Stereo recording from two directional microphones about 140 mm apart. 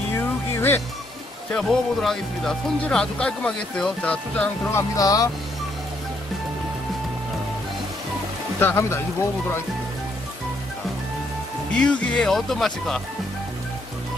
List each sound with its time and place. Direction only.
0.2 s music: 15° left (ahead or behind)
1.5 s speech: 5° left (ahead or behind)
4.9 s speech: 25° left (ahead or behind)
8.5 s speech: 15° left (ahead or behind)
11.8 s speech: 5° left (ahead or behind)